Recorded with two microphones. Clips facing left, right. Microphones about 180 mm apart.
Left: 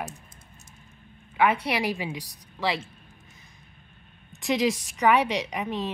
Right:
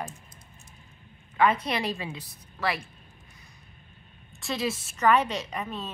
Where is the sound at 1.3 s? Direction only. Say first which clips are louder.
Left 1 dB; 10° left (ahead or behind).